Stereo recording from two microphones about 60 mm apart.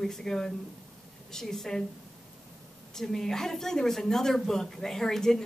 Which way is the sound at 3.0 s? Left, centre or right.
Centre.